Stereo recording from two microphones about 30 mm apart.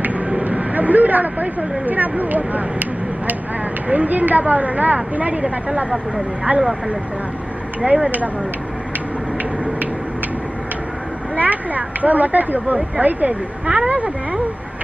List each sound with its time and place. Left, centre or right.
0.4 s speech: right
3.9 s speech: right
6.5 s speech: right
7.8 s speech: right
11.3 s speech: right
13.0 s speech: right